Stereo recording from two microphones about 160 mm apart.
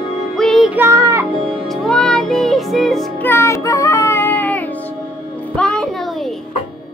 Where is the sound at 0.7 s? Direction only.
15° right (ahead or behind).